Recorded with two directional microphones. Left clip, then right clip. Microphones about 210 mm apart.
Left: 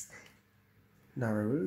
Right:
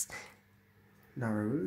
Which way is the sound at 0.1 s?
30° right (ahead or behind).